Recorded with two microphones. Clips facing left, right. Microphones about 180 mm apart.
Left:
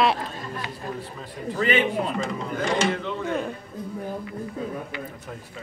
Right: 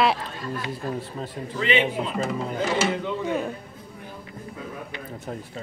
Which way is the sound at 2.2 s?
5° right (ahead or behind).